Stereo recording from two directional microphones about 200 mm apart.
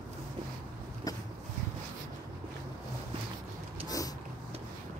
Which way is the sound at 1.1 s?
20° left (ahead or behind).